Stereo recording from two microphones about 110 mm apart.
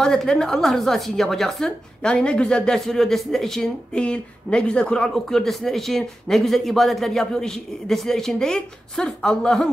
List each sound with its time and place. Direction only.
0.0 s a woman's voice: 5° left (ahead or behind)